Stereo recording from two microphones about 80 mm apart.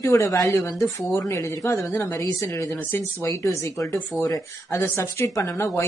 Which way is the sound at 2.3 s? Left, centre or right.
Left.